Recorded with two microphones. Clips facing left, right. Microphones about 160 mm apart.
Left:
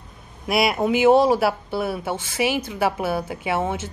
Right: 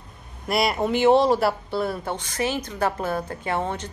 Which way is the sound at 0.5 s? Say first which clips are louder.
Left 2 dB; 5° left (ahead or behind).